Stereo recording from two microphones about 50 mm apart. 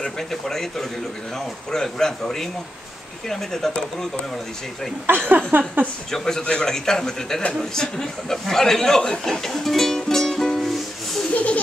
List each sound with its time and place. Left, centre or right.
0.0 s speech: centre
5.1 s speech: right
6.1 s speech: centre
11.3 s a sound: left